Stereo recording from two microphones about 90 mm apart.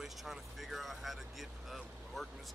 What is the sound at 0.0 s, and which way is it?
Vehicle, centre (ahead or behind).